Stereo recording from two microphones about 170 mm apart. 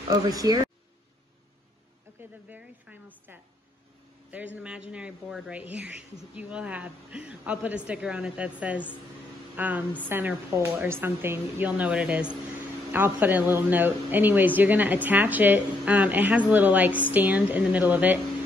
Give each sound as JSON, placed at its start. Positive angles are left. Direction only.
{"t": 0.2, "sound": "speech", "side_deg": -20}
{"t": 2.1, "sound": "speech", "side_deg": -10}
{"t": 4.6, "sound": "a woman's voice", "side_deg": -5}